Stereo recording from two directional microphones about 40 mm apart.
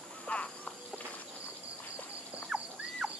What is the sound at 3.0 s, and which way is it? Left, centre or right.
Bird, centre.